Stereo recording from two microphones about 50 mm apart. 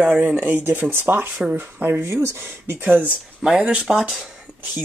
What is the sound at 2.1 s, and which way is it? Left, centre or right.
Speech, right.